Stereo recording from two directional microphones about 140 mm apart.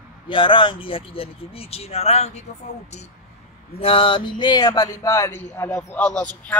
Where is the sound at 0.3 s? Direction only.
35° left (ahead or behind).